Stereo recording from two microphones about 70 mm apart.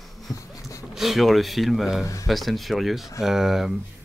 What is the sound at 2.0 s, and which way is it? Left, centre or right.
Speech, left.